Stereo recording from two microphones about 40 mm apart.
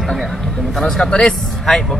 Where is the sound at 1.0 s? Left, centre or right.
Left.